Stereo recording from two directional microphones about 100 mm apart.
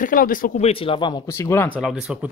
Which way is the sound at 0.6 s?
65° left (ahead or behind).